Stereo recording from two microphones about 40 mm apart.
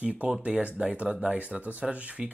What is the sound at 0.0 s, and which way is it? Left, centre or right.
Speech, right.